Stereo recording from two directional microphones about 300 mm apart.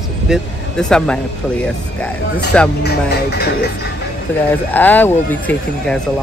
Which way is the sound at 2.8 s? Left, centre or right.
Left.